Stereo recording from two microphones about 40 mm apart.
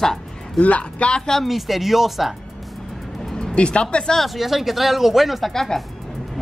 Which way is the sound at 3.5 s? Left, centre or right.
Left.